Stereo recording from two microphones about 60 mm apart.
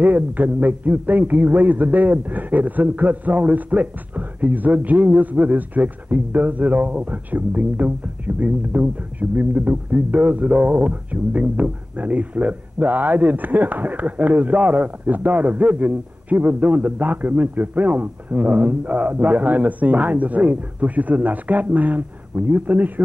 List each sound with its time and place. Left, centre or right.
0.0 s speech: right